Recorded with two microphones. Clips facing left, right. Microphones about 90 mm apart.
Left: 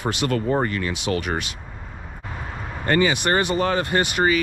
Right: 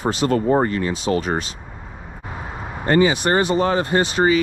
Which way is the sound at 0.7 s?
25° right (ahead or behind).